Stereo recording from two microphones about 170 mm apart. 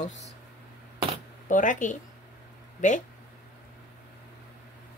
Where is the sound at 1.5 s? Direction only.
50° left (ahead or behind).